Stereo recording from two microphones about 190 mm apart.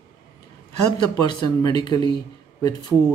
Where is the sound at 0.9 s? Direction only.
25° left (ahead or behind).